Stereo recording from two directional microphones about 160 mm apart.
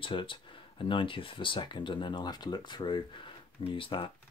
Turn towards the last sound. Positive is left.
turn(degrees=35)  # may be behind; listen again after turning